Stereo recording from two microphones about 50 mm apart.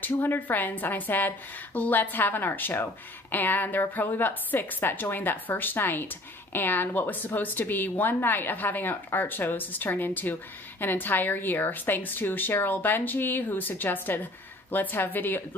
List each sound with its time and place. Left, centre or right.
0.0 s speech: left